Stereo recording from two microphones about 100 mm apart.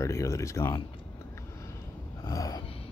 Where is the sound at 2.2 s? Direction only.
35° left (ahead or behind).